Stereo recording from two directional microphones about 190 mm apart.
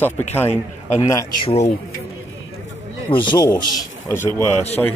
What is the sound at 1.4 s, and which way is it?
Speech, 35° left (ahead or behind).